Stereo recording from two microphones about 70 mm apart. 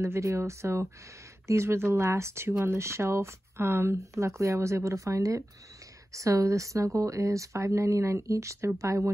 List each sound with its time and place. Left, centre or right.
0.0 s speech: right
3.9 s speech: right